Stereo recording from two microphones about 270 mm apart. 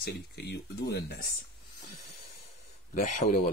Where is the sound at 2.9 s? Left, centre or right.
Left.